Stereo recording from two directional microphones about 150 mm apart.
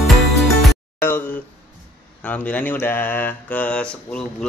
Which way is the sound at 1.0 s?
15° left (ahead or behind).